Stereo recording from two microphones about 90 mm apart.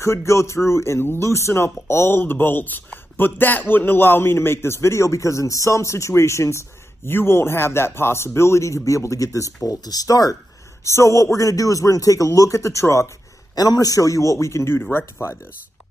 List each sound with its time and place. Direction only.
0.0 s a man's voice: 30° left (ahead or behind)
10.8 s a man's voice: 35° left (ahead or behind)
13.6 s a man's voice: 45° left (ahead or behind); by 15.3 s 30° left (ahead or behind)